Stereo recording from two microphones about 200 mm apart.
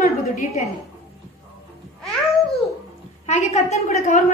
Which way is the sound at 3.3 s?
35° left (ahead or behind).